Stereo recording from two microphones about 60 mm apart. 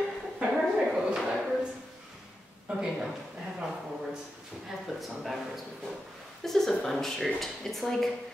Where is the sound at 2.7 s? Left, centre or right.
Centre.